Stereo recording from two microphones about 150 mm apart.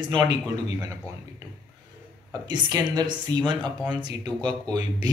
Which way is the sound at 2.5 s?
30° right (ahead or behind).